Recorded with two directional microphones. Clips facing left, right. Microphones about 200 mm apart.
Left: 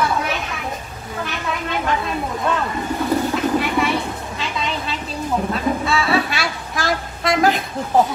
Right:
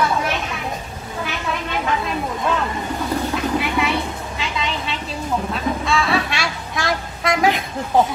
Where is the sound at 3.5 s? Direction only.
Centre (ahead or behind).